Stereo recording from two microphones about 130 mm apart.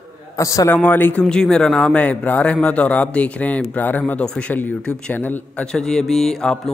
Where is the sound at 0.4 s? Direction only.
25° left (ahead or behind).